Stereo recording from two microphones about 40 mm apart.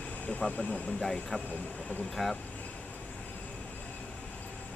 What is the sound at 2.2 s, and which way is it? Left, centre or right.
Speech, centre.